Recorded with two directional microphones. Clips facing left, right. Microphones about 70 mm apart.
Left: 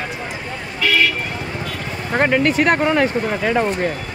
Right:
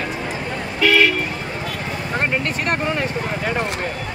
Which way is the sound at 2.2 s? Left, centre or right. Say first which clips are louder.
Left 8 dB; left.